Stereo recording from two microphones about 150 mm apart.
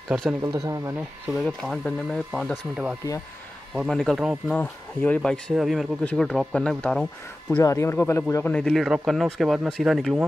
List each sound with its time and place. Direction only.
0.1 s speech: 5° right (ahead or behind)
0.4 s speech: 25° right (ahead or behind)
0.9 s speech: centre (ahead or behind)
3.7 s speech: centre (ahead or behind)
4.6 s speech: 10° left (ahead or behind)
7.5 s speech: 20° left (ahead or behind)
8.5 s speech: centre (ahead or behind)